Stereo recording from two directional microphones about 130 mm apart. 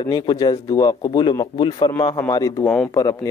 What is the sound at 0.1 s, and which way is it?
A man's voice, 30° left (ahead or behind).